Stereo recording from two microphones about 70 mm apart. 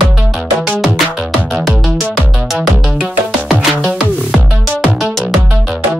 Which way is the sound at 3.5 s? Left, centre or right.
Right.